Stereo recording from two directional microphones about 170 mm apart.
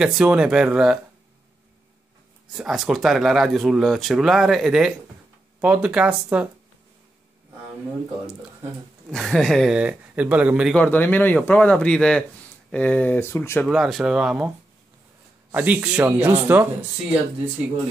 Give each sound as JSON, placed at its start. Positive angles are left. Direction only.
{"t": 0.0, "sound": "speech", "side_deg": -5}
{"t": 2.5, "sound": "speech", "side_deg": -5}
{"t": 9.1, "sound": "speech", "side_deg": 0}
{"t": 10.7, "sound": "speech", "side_deg": 10}
{"t": 13.7, "sound": "speech", "side_deg": 0}
{"t": 15.5, "sound": "speech", "side_deg": -10}